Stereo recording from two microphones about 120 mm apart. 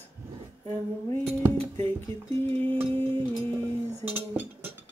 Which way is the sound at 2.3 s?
15° left (ahead or behind).